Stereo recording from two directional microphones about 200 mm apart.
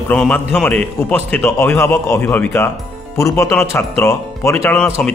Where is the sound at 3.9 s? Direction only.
15° left (ahead or behind).